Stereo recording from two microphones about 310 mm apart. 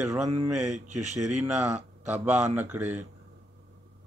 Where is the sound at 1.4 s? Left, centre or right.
Centre.